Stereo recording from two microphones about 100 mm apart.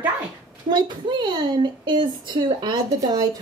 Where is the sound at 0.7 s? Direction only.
45° right (ahead or behind).